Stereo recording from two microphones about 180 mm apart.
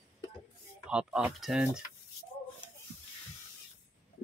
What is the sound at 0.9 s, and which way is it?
Speech, 5° right (ahead or behind).